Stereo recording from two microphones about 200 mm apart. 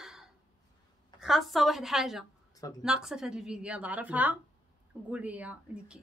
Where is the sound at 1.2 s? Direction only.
Centre (ahead or behind).